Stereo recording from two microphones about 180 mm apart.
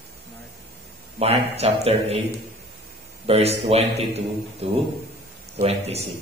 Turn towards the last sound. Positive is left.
turn(degrees=-35)  # may be behind; listen again after turning